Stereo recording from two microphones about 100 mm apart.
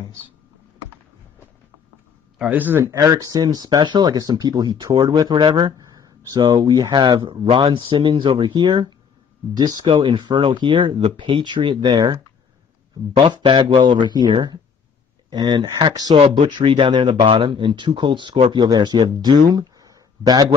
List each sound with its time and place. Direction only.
2.5 s a man's voice: 15° right (ahead or behind)
2.8 s speech: 30° right (ahead or behind); by 5.8 s 50° right (ahead or behind)
6.3 s speech: 40° right (ahead or behind)
13.2 s a man's voice: 55° right (ahead or behind); by 20.5 s 40° right (ahead or behind)